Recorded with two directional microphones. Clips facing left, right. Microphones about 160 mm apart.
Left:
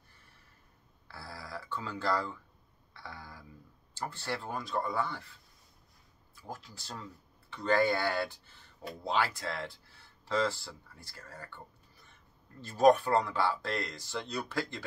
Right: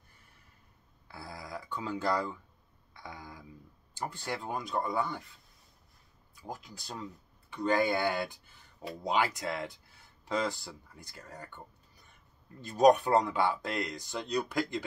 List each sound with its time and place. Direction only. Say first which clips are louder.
1.0 s a sound: right 2 dB; 15° right (ahead or behind)
3.9 s speech: even; 15° right (ahead or behind)
6.3 s speech: right 2 dB; 15° right (ahead or behind)
12.6 s speech: right 1 dB; 20° right (ahead or behind)